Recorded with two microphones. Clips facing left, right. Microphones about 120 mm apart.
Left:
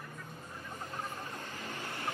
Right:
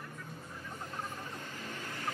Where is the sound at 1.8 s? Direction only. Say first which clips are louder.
Left 1 dB; 20° left (ahead or behind).